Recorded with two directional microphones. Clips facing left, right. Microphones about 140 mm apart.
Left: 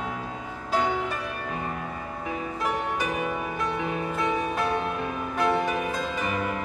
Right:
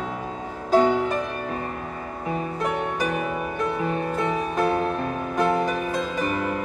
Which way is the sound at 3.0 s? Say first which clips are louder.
Right 3 dB; 45° right (ahead or behind).